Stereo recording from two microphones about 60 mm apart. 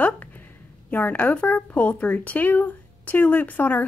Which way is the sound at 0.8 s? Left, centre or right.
Left.